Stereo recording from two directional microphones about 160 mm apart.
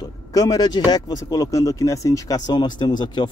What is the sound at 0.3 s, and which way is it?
Speech, 20° left (ahead or behind).